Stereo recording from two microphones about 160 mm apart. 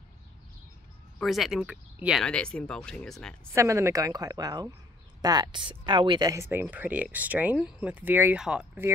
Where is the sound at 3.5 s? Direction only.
20° right (ahead or behind).